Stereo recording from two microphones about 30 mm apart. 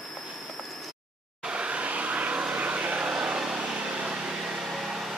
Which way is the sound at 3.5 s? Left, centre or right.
Right.